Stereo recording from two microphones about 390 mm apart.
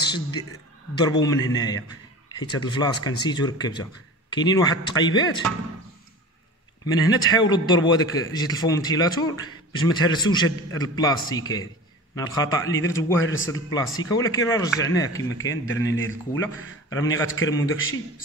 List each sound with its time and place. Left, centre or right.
0.0 s a sound: centre
0.9 s a man's voice: centre
6.9 s a man's voice: centre
13.2 s a man's voice: left
13.5 s a man's voice: centre
17.5 s a man's voice: centre